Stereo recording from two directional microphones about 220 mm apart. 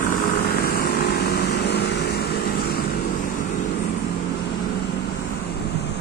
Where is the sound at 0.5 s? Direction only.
45° left (ahead or behind).